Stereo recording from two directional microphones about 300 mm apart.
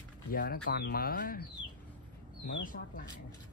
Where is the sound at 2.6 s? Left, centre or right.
Left.